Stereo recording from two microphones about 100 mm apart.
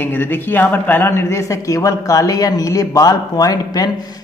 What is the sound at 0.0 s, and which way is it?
Speech, 20° left (ahead or behind).